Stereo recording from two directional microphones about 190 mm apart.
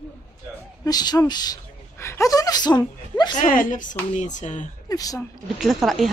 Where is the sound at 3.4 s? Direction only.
45° left (ahead or behind).